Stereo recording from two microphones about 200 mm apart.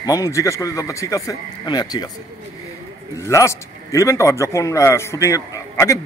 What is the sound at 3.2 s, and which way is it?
A man's voice, 15° left (ahead or behind).